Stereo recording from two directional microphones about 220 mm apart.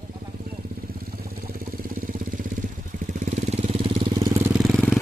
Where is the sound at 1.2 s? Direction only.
40° right (ahead or behind).